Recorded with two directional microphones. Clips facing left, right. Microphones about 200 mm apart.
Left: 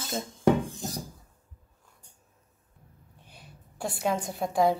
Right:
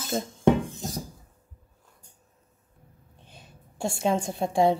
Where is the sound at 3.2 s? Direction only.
25° right (ahead or behind).